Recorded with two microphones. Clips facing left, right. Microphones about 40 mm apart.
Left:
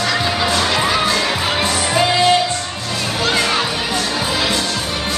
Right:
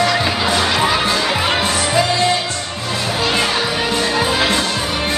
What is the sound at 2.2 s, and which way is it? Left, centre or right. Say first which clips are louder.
Music: left 3 dB; centre.